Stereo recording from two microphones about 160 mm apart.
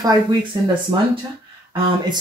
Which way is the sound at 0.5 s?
25° right (ahead or behind).